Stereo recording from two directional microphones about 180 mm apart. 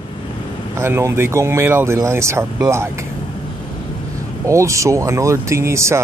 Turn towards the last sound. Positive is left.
turn(degrees=-15)  # may be behind; listen again after turning